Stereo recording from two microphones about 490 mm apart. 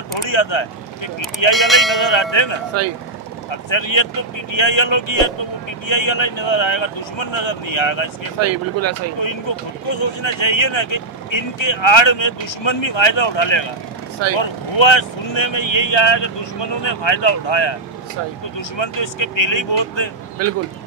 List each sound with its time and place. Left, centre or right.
0.2 s speech: left
1.5 s speech: centre
2.0 s speech: left
3.7 s speech: left
8.4 s speech: right
9.2 s speech: left
18.8 s speech: left